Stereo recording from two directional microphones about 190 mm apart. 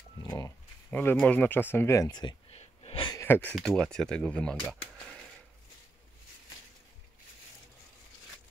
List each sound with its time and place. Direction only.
0.2 s pig: 20° left (ahead or behind)
0.8 s speech: 10° left (ahead or behind)
2.5 s wheeze: 30° left (ahead or behind)
3.2 s speech: 10° left (ahead or behind)